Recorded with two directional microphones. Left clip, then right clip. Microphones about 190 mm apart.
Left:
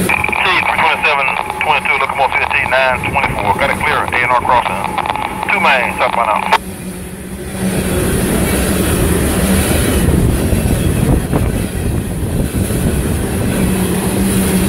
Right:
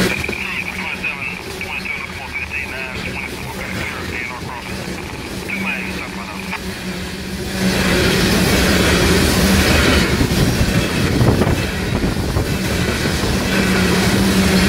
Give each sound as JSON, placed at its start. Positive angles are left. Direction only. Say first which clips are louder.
{"t": 0.4, "sound": "frog", "louder": "left 11 dB", "side_deg": 50}
{"t": 1.7, "sound": "speech", "louder": "left 13 dB", "side_deg": 50}
{"t": 5.5, "sound": "speech", "louder": "left 12 dB", "side_deg": 50}